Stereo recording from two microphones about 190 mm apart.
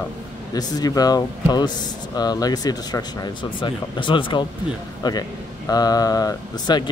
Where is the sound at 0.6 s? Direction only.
20° left (ahead or behind).